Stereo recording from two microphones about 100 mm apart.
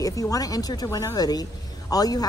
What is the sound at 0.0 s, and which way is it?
Speech, 35° left (ahead or behind).